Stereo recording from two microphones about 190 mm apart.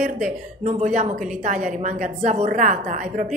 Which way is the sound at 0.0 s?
40° right (ahead or behind).